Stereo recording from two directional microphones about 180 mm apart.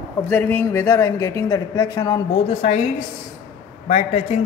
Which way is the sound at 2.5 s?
35° left (ahead or behind).